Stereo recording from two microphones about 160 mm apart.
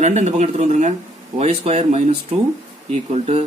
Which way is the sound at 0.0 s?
45° right (ahead or behind).